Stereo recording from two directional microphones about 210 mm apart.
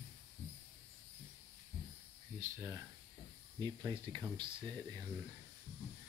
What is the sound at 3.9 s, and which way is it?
Speech, 20° right (ahead or behind).